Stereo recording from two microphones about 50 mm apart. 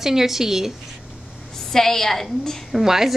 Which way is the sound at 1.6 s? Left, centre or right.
Centre.